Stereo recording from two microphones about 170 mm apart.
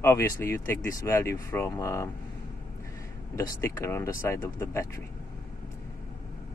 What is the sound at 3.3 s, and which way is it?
Speech, 20° left (ahead or behind).